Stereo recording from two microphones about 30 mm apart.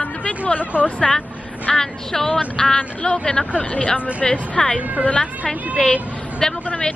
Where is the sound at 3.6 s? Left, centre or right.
Left.